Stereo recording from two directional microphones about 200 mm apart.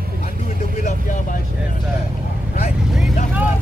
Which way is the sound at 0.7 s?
40° left (ahead or behind).